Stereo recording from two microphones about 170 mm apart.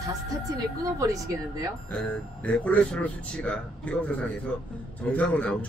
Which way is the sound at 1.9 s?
5° left (ahead or behind).